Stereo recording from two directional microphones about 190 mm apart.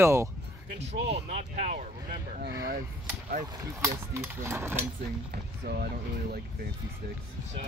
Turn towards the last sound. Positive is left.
turn(degrees=-55)  # may be behind; listen again after turning